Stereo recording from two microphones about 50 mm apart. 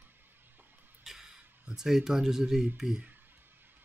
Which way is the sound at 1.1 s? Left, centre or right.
Centre.